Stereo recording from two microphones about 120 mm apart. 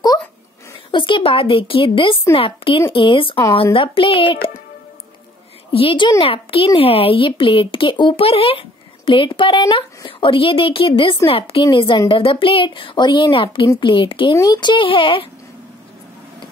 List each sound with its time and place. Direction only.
0.9 s speech: 45° left (ahead or behind)
5.7 s speech: 50° left (ahead or behind)
14.3 s speech: 30° left (ahead or behind)